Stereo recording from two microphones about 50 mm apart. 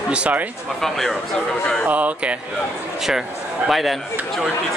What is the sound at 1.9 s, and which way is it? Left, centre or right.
Speech, right.